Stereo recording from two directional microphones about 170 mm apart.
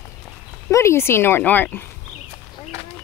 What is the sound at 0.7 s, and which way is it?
Speech, 15° left (ahead or behind).